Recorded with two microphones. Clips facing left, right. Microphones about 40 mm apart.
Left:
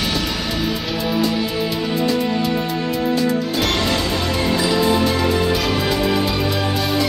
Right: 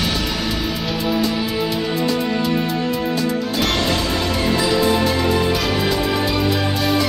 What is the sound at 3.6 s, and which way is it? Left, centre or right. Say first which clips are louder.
Music: even; centre.